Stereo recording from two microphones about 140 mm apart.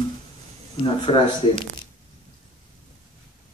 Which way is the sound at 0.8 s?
35° left (ahead or behind).